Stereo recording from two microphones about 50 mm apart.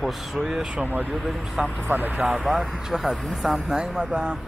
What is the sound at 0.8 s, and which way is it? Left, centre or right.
Speech, right.